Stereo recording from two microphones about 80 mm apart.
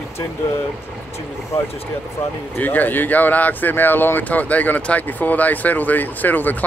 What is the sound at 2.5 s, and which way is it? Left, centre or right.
Speech, left.